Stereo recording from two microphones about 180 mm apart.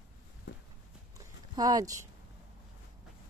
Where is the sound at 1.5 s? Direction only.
20° right (ahead or behind).